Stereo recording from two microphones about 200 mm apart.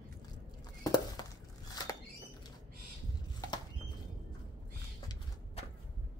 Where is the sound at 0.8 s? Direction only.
20° left (ahead or behind).